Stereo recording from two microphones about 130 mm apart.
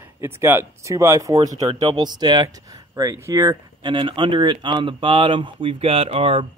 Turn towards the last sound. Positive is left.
turn(degrees=-45)  # may be behind; listen again after turning